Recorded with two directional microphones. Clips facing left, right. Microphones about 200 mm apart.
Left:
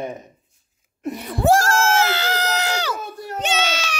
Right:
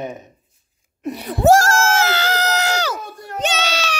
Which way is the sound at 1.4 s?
45° right (ahead or behind).